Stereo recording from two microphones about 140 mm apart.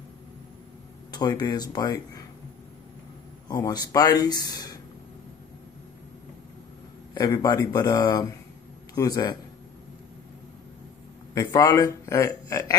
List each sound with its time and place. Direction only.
1.1 s speech: 30° left (ahead or behind)
3.4 s speech: 30° left (ahead or behind)
7.2 s speech: 30° left (ahead or behind)
11.3 s speech: 25° left (ahead or behind)